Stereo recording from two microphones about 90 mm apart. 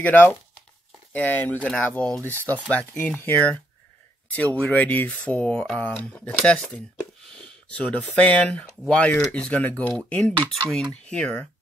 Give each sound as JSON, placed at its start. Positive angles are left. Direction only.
{"t": 0.0, "sound": "speech", "side_deg": 20}